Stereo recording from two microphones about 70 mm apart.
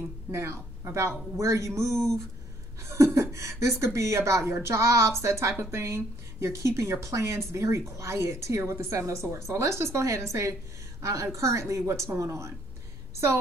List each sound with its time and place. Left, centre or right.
0.3 s a woman's voice: right